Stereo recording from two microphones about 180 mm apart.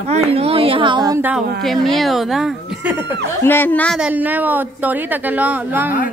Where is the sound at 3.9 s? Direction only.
10° right (ahead or behind).